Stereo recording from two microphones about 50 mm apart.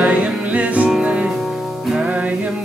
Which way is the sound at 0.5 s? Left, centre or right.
Right.